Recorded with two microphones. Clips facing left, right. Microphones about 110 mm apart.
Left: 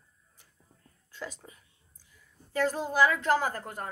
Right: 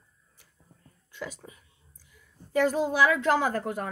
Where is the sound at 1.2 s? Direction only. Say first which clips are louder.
Right 2 dB; 5° right (ahead or behind).